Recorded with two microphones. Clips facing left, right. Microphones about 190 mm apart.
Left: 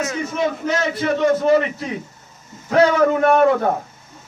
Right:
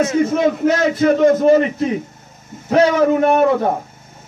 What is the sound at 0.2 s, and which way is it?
A man's voice, 50° right (ahead or behind).